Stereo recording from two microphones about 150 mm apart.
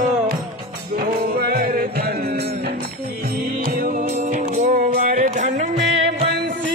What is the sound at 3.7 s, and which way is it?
Music, 60° right (ahead or behind).